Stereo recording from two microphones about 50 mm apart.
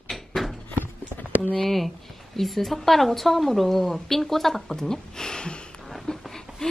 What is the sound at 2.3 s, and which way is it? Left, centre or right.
A woman's voice, centre.